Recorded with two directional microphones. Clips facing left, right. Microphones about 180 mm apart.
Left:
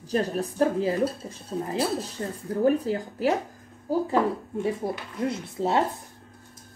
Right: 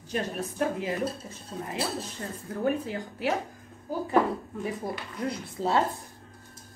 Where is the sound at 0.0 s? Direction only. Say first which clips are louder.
Left 5 dB; 35° left (ahead or behind).